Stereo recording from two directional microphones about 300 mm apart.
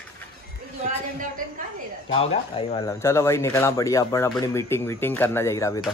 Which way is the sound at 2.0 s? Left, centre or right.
Centre.